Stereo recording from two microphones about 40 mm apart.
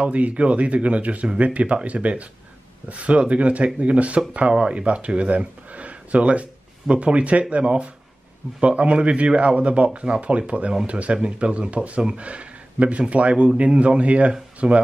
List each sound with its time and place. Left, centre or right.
0.0 s a man's voice: right